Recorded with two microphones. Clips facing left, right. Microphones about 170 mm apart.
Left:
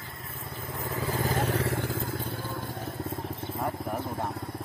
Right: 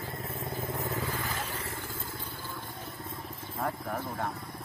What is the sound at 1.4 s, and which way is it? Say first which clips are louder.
Vehicle: left 10 dB; 80° left.